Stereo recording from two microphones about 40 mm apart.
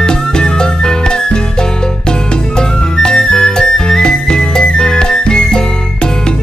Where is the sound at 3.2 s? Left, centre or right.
Centre.